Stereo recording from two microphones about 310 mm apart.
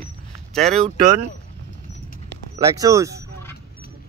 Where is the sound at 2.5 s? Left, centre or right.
Centre.